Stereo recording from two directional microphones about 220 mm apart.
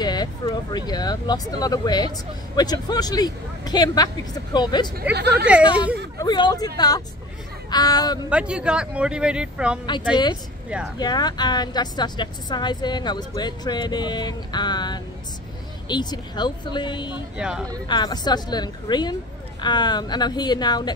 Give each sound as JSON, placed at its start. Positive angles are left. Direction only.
{"t": 0.0, "sound": "speech", "side_deg": 20}
{"t": 5.1, "sound": "speech", "side_deg": -50}
{"t": 6.1, "sound": "a woman's voice", "side_deg": 20}
{"t": 7.7, "sound": "speech", "side_deg": 15}
{"t": 8.3, "sound": "speech", "side_deg": -5}
{"t": 10.1, "sound": "a woman's voice", "side_deg": 20}
{"t": 17.4, "sound": "speech", "side_deg": -5}
{"t": 17.8, "sound": "a woman's voice", "side_deg": 20}